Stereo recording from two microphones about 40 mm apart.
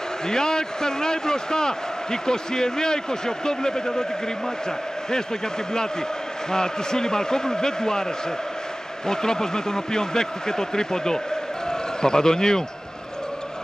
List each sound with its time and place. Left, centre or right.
0.3 s a man's voice: centre
6.5 s a man's voice: centre